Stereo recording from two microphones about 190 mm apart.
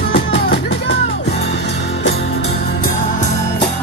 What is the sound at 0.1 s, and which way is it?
Music, 65° left (ahead or behind).